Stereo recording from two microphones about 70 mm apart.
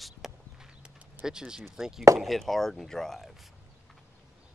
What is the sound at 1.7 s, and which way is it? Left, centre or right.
Speech, centre.